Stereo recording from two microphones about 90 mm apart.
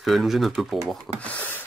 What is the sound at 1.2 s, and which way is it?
Speech, 15° left (ahead or behind).